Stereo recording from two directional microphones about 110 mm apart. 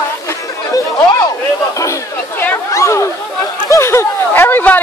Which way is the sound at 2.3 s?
20° left (ahead or behind).